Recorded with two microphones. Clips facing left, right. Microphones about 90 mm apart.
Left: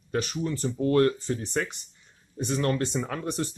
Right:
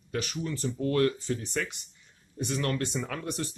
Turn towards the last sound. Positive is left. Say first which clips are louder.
# left 3 dB
turn(degrees=30)  # may be behind; listen again after turning